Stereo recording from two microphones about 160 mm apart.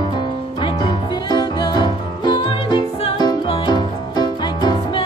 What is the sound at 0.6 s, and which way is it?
Music, 30° left (ahead or behind).